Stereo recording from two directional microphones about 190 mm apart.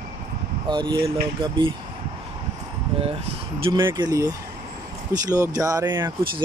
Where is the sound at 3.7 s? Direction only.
15° right (ahead or behind).